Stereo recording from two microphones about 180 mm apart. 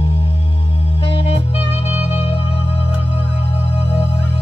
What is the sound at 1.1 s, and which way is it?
Music, 30° left (ahead or behind).